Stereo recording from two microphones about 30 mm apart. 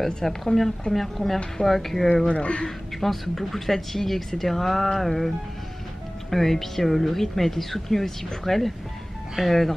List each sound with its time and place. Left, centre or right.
0.0 s speech: centre
2.2 s speech: left
3.0 s speech: centre
6.3 s speech: centre